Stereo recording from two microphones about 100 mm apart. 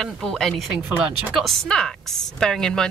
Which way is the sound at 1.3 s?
5° left (ahead or behind).